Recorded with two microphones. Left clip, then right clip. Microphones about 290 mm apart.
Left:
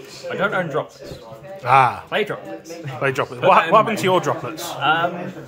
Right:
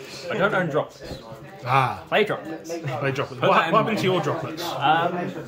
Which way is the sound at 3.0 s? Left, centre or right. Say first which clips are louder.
Left 6 dB; centre.